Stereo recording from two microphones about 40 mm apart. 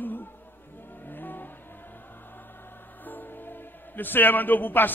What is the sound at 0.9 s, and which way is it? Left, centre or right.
Vehicle, left.